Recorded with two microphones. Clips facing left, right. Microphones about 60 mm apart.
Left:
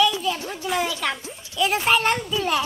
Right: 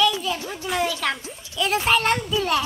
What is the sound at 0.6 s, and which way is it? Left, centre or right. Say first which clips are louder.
A child's voice: even; centre.